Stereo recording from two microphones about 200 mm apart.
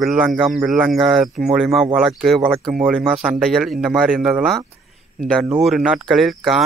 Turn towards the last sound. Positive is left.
turn(degrees=0)  # may be behind; listen again after turning